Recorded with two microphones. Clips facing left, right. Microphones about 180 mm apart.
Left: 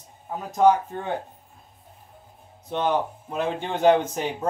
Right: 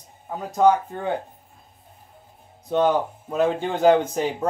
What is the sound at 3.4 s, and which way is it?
Speech, 40° right (ahead or behind).